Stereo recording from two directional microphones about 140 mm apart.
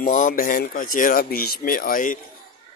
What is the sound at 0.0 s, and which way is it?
A man's voice, 65° left (ahead or behind).